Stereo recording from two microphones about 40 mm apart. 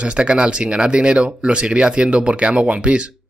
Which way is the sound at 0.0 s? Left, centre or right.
Right.